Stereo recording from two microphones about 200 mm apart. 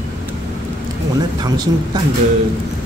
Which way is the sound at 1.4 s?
20° right (ahead or behind).